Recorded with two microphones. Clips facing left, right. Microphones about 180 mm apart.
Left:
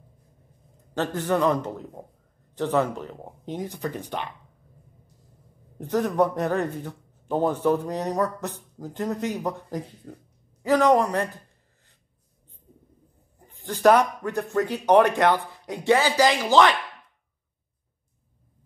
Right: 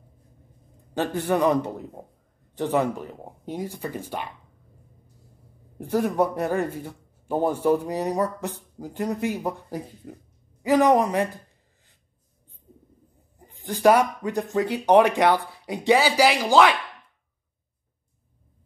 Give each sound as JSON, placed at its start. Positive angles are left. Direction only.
{"t": 0.9, "sound": "speech", "side_deg": -15}
{"t": 5.8, "sound": "speech", "side_deg": -10}
{"t": 13.7, "sound": "speech", "side_deg": -10}